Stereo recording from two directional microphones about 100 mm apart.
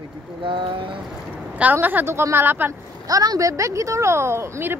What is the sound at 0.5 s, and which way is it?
Speech, 55° right (ahead or behind).